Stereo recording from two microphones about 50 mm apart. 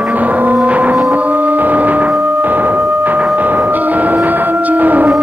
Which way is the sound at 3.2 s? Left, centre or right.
Right.